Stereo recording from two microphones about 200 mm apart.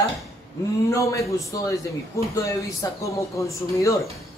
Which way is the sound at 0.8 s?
15° left (ahead or behind).